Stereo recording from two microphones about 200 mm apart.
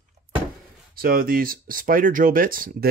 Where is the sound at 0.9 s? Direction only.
45° right (ahead or behind).